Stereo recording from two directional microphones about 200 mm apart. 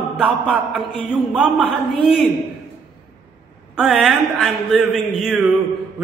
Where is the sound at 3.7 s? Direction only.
5° right (ahead or behind).